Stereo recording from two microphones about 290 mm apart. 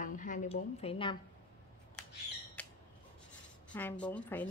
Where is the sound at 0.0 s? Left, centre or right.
Left.